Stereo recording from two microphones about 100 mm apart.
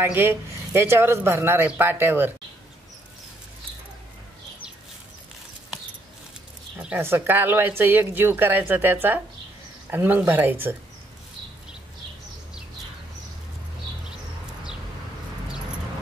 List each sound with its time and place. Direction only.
0.0 s a woman's voice: 25° right (ahead or behind)
7.0 s a woman's voice: 25° right (ahead or behind)